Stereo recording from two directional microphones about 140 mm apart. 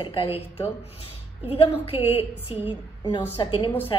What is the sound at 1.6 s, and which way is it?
A woman's voice, 45° left (ahead or behind).